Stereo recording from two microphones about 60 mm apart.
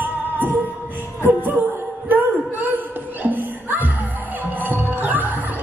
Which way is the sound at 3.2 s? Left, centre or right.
Right.